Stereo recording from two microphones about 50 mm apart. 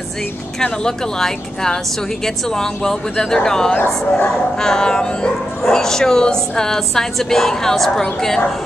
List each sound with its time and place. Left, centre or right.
0.6 s speech: centre
3.7 s speech: left
4.6 s speech: centre